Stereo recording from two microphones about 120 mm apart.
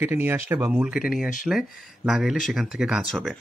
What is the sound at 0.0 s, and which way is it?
Speech, 20° right (ahead or behind).